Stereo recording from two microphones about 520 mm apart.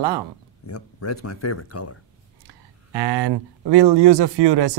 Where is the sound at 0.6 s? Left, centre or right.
Left.